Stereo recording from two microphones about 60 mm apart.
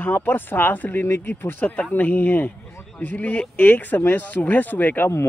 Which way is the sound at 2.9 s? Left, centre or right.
Left.